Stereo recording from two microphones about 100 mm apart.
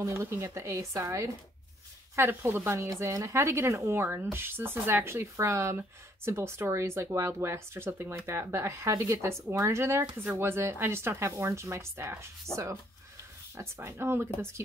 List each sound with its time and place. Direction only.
0.0 s speech: 25° right (ahead or behind)
13.6 s speech: 30° right (ahead or behind)